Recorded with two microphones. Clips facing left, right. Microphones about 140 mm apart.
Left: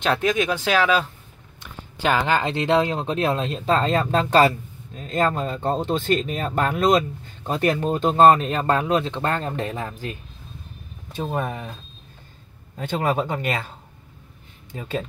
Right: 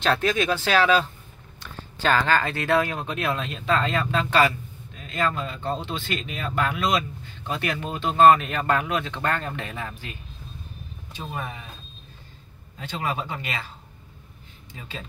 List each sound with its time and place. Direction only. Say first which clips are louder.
0.0 s speech: left 2 dB; 15° left (ahead or behind); by 10.1 s 40° left (ahead or behind)
11.1 s speech: left 8 dB; 50° left (ahead or behind)
12.7 s speech: left 6 dB; 45° left (ahead or behind)
14.7 s speech: left 10 dB; 50° left (ahead or behind)